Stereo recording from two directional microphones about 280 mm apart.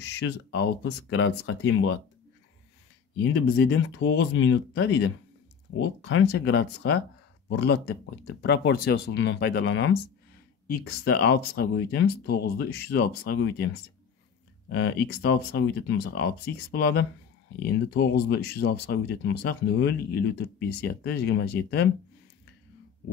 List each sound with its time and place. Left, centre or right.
0.2 s speech: left
3.5 s speech: left
14.7 s speech: left